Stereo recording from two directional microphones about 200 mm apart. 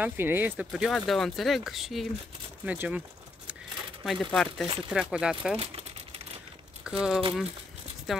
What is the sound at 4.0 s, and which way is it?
Speech, centre (ahead or behind).